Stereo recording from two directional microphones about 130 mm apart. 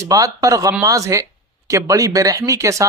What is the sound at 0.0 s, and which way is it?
Speech, 25° right (ahead or behind).